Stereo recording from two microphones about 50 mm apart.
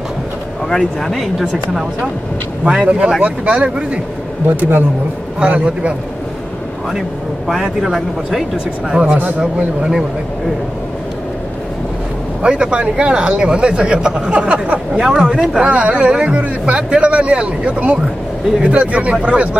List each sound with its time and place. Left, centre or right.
0.7 s speech: centre
1.1 s speech: centre
2.6 s speech: centre
4.6 s speech: right
5.4 s speech: right
7.4 s speech: centre
9.0 s speech: right
12.4 s speech: centre
15.6 s speech: right